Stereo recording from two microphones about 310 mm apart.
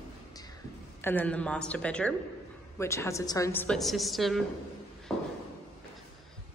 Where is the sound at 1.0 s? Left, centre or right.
Centre.